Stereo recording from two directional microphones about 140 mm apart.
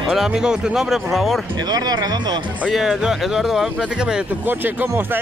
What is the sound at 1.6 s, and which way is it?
Speech, 30° right (ahead or behind).